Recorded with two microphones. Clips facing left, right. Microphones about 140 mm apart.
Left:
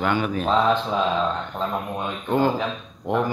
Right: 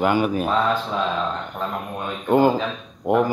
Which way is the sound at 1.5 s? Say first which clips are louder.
Left 1 dB; 15° left (ahead or behind).